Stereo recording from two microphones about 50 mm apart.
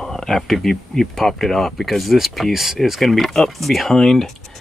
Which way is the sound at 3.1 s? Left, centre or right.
Centre.